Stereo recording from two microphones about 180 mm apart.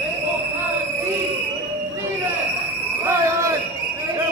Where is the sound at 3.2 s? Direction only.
15° right (ahead or behind).